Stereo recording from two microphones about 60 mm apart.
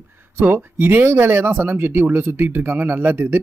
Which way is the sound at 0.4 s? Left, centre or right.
Right.